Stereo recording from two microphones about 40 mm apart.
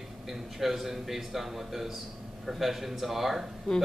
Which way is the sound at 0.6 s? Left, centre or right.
Centre.